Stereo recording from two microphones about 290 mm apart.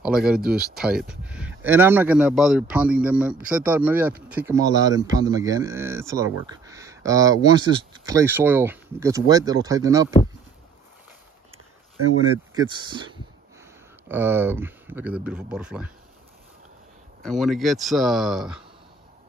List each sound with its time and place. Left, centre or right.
0.0 s speech: centre
12.5 s speech: centre
17.2 s speech: centre